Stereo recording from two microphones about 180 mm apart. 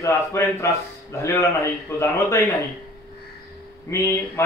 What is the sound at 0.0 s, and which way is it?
Speech, 15° left (ahead or behind).